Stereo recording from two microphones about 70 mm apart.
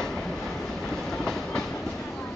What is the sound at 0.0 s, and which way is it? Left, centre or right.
Train, centre.